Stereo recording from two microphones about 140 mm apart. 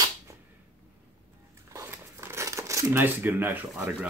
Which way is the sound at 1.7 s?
20° right (ahead or behind).